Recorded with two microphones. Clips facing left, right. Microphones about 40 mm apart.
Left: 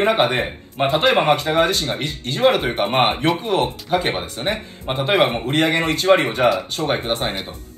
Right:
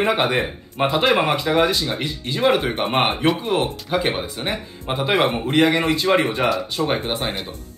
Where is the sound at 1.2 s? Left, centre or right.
Left.